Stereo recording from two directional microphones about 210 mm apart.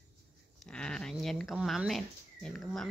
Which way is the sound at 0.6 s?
5° left (ahead or behind).